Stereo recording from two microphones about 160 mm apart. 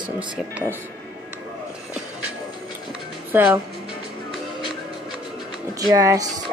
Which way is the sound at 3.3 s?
15° right (ahead or behind).